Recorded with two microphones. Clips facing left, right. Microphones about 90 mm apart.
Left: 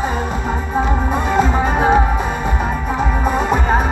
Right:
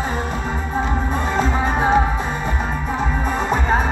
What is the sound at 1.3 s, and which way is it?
Music, 15° left (ahead or behind).